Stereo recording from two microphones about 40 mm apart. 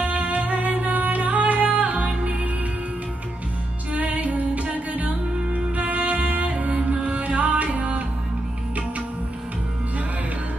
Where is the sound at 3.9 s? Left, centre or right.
Right.